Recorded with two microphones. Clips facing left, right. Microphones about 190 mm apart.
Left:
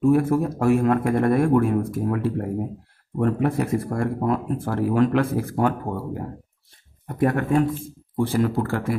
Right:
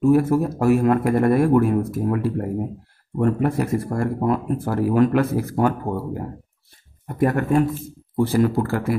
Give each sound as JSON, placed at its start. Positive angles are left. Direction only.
{"t": 0.0, "sound": "speech", "side_deg": 0}